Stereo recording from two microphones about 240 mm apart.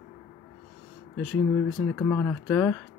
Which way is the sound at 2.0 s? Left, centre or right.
Centre.